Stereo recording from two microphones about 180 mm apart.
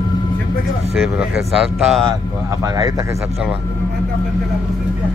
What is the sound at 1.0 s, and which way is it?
Speech, 5° right (ahead or behind).